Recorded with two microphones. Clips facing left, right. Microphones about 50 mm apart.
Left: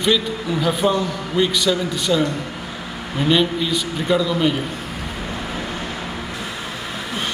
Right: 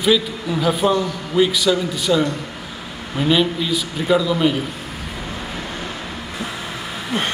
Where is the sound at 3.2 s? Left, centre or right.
Centre.